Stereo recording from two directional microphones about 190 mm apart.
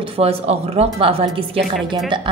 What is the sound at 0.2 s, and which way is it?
A woman's voice, 30° right (ahead or behind).